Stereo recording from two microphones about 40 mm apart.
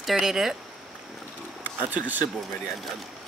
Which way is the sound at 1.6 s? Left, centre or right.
Right.